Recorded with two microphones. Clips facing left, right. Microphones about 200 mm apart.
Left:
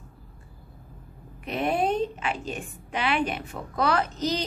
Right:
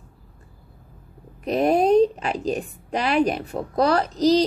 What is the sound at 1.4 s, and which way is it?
A woman's voice, 40° right (ahead or behind).